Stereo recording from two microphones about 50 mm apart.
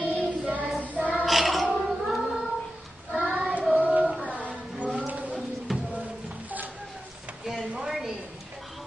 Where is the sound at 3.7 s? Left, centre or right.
Right.